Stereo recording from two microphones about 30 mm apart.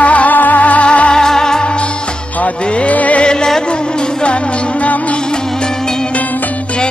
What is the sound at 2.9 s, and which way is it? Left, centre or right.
Music, left.